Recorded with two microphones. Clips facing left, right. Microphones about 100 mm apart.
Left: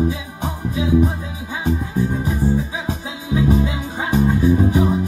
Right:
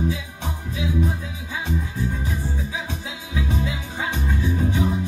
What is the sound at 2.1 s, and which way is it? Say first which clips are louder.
Music: left 9 dB; 30° left (ahead or behind).